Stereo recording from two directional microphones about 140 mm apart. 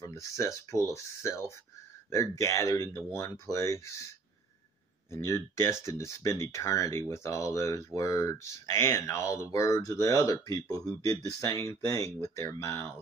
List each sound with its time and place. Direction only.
0.0 s speech: 25° left (ahead or behind)
5.1 s speech: 20° left (ahead or behind)